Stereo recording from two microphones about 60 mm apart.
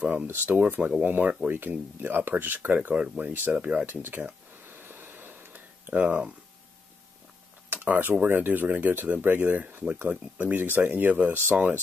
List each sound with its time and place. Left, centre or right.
0.0 s speech: right
0.3 s speech: right
3.9 s speech: right
4.6 s a sound: right
7.7 s speech: right